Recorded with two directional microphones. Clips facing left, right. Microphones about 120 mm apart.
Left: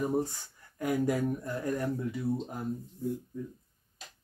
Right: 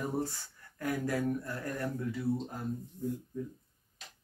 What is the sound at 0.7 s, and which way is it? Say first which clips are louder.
Speech: left 4 dB; 20° left (ahead or behind).